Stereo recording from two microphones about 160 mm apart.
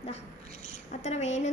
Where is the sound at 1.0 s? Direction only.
45° left (ahead or behind).